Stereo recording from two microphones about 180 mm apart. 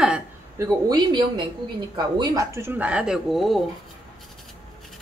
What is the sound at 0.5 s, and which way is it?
Speech, 20° right (ahead or behind).